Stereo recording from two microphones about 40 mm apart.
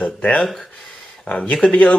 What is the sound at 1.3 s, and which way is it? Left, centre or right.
Speech, left.